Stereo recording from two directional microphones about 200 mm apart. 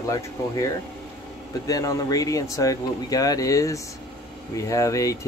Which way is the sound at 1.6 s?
15° left (ahead or behind).